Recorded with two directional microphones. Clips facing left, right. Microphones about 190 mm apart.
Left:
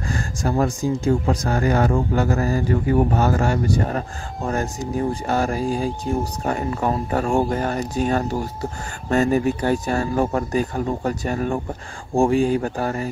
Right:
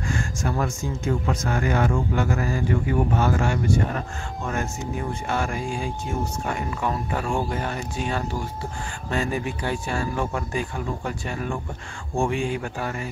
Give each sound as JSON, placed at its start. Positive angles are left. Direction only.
{"t": 0.1, "sound": "speech", "side_deg": 35}